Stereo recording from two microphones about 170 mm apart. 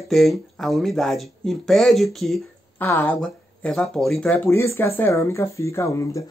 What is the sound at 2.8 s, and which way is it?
Speech, 15° left (ahead or behind).